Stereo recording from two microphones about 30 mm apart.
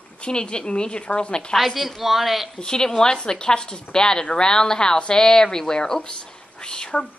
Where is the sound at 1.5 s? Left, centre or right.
Centre.